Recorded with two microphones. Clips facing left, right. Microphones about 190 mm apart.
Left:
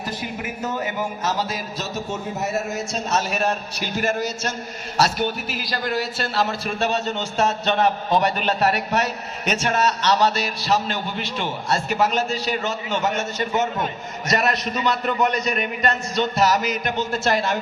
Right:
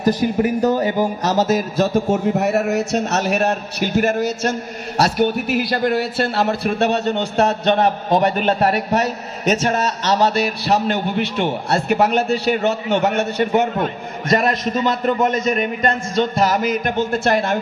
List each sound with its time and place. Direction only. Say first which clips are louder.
0.0 s a man's voice: right 13 dB; 40° right (ahead or behind); by 7.7 s 60° right (ahead or behind)
7.8 s a man's voice: even; 50° right (ahead or behind)
14.3 s a man's voice: right 5 dB; 45° right (ahead or behind)